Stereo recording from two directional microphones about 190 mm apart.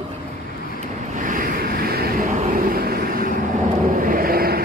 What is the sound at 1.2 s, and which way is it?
Vehicle, 45° right (ahead or behind).